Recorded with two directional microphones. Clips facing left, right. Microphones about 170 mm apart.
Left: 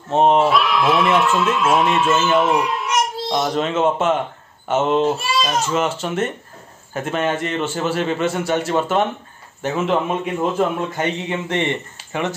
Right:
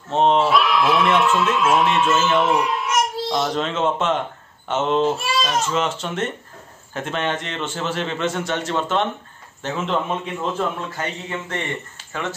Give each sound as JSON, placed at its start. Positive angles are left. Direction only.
{"t": 0.1, "sound": "a man's voice", "side_deg": 5}